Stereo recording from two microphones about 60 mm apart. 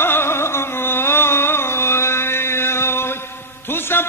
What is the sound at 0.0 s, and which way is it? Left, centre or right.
Carnatic music, left.